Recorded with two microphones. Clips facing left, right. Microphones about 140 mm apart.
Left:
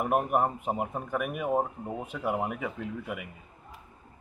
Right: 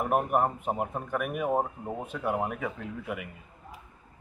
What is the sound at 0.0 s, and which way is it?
Speech, 5° left (ahead or behind).